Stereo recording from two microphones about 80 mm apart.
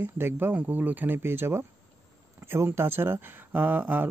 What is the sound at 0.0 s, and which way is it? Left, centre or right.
A man's voice, right.